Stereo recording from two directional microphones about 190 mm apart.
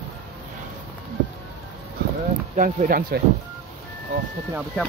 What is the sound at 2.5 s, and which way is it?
Speech, 45° right (ahead or behind).